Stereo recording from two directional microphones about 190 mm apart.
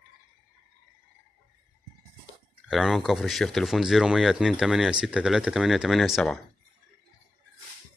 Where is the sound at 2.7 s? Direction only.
Centre (ahead or behind).